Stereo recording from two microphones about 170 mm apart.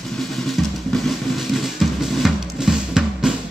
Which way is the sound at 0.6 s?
Centre (ahead or behind).